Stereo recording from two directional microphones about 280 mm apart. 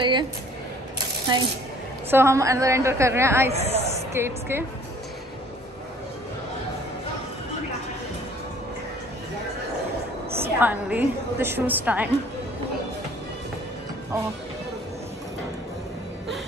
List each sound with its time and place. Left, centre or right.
0.0 s a woman's voice: centre
2.0 s a woman's voice: centre
3.5 s speech: right
4.1 s a woman's voice: centre
10.3 s a woman's voice: centre